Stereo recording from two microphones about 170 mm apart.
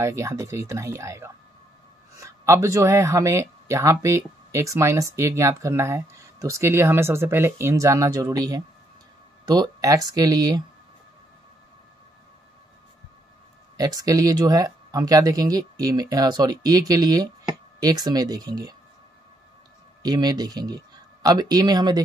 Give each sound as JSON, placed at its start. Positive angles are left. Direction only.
{"t": 0.0, "sound": "speech", "side_deg": -15}
{"t": 13.7, "sound": "speech", "side_deg": -20}
{"t": 20.0, "sound": "speech", "side_deg": -25}